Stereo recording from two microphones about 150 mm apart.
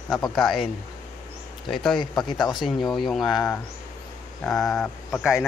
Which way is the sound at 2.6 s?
Centre (ahead or behind).